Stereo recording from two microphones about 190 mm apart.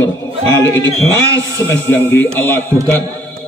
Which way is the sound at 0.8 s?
15° right (ahead or behind).